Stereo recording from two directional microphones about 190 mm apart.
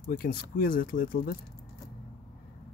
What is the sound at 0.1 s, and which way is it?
Speech, 50° left (ahead or behind).